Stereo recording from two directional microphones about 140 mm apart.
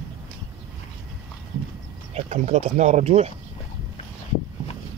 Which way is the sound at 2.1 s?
55° right (ahead or behind).